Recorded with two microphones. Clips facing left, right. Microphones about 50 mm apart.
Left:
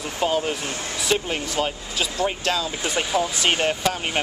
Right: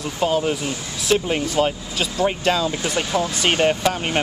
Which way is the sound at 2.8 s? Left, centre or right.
Centre.